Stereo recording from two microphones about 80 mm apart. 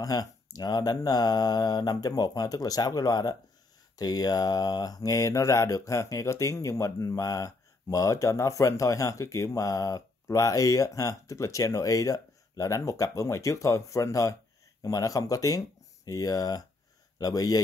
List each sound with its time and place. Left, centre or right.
0.0 s speech: left